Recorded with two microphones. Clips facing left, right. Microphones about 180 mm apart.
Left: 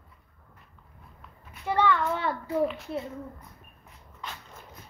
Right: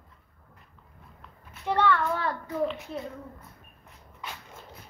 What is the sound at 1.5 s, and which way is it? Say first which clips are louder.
Child singing: even; 10° left (ahead or behind).